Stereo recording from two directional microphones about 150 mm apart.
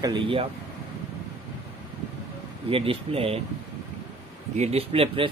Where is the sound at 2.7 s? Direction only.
40° right (ahead or behind).